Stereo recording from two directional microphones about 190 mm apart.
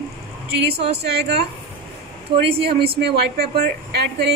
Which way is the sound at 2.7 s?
55° right (ahead or behind).